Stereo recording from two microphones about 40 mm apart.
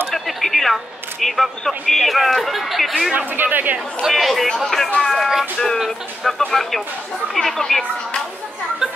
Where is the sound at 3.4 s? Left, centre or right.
Right.